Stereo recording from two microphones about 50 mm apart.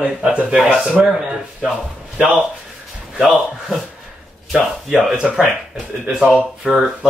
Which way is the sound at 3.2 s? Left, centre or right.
Centre.